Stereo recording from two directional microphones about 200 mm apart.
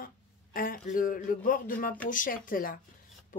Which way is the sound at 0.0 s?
45° left (ahead or behind).